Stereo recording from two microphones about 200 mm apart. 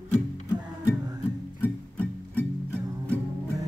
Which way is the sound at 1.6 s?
10° left (ahead or behind).